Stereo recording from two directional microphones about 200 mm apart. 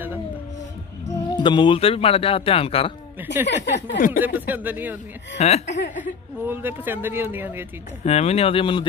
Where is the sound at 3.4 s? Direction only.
60° left (ahead or behind).